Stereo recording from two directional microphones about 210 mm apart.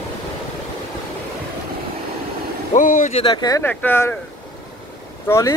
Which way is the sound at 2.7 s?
40° left (ahead or behind).